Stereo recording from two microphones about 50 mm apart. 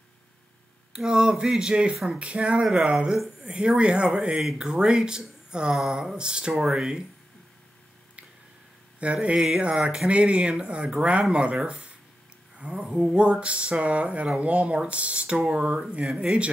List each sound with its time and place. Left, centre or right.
0.9 s speech: centre
4.4 s speech: centre
9.0 s speech: right